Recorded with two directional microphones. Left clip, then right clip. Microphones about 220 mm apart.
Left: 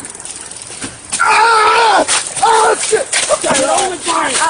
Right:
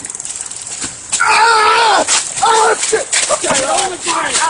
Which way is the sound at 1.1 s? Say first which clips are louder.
Even; 45° right (ahead or behind).